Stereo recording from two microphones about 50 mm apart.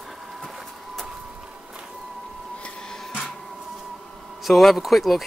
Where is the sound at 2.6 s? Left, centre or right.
Centre.